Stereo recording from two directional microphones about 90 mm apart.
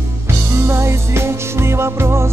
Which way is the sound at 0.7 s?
30° right (ahead or behind).